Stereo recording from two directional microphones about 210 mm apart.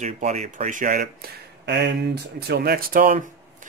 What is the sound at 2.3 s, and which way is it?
Speech, 50° right (ahead or behind).